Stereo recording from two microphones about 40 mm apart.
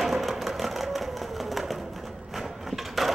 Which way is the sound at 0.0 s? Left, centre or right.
Centre.